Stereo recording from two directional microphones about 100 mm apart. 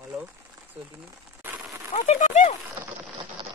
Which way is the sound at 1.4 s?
15° right (ahead or behind).